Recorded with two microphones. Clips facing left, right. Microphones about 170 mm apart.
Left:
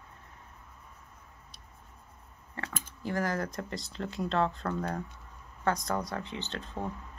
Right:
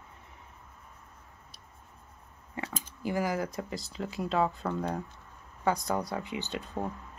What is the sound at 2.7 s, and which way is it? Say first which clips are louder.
Speech: right 1 dB; 10° right (ahead or behind).